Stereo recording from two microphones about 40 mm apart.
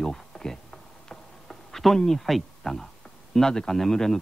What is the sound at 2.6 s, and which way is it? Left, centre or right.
Speech, centre.